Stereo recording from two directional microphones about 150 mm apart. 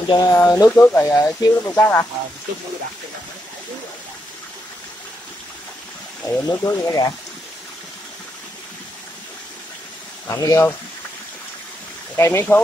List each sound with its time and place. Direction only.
0.1 s speech: 25° left (ahead or behind)
6.2 s speech: 20° left (ahead or behind)
10.2 s speech: 20° left (ahead or behind)
12.2 s speech: 15° left (ahead or behind)